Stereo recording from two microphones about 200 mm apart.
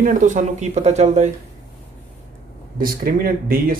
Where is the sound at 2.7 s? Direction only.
45° right (ahead or behind).